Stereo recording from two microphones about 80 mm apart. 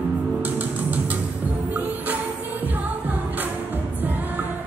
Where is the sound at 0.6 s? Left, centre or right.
Centre.